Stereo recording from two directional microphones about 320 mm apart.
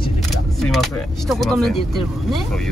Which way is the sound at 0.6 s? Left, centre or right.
Centre.